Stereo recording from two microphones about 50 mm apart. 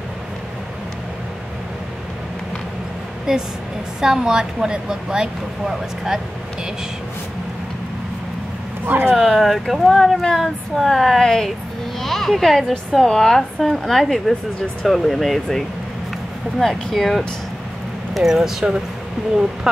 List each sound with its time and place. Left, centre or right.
3.3 s a woman's voice: centre
8.8 s speech: right
9.1 s speech: centre
18.1 s a woman's voice: centre